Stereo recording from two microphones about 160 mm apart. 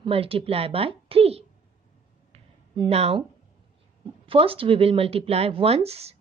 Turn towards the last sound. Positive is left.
turn(degrees=-40)  # may be behind; listen again after turning